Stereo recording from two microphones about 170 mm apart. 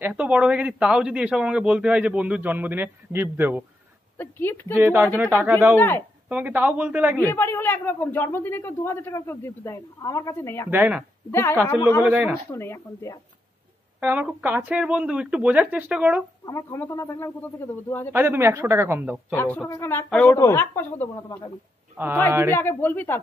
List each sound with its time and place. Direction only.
0.0 s speech: 10° right (ahead or behind)
4.2 s speech: 10° left (ahead or behind)
4.7 s speech: 10° right (ahead or behind)
5.8 s speech: 15° left (ahead or behind)
6.2 s speech: 10° right (ahead or behind)
7.2 s speech: 10° left (ahead or behind)
10.7 s speech: 10° right (ahead or behind)
12.5 s speech: 15° left (ahead or behind)
13.9 s speech: 10° right (ahead or behind)
16.4 s speech: 15° left (ahead or behind)
18.1 s speech: 10° right (ahead or behind)
19.3 s speech: 10° left (ahead or behind)
21.9 s a man's voice: 10° right (ahead or behind)
22.5 s speech: 15° left (ahead or behind)